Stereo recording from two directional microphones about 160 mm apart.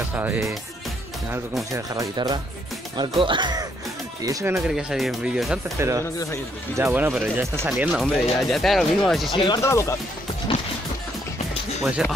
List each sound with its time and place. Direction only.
0.1 s speech: 10° right (ahead or behind)
1.7 s speech: 20° right (ahead or behind)
4.6 s speech: 5° right (ahead or behind)
5.8 s speech: 20° right (ahead or behind)
6.0 s speech: 15° left (ahead or behind)
6.8 s speech: 10° right (ahead or behind)
8.0 s speech: centre (ahead or behind)
9.6 s speech: 20° left (ahead or behind)